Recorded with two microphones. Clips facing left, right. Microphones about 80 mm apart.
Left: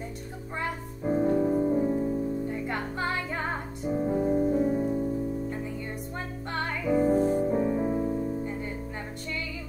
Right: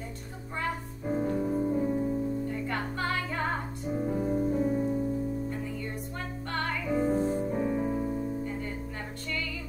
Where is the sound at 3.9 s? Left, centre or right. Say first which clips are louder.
Left 4 dB; centre.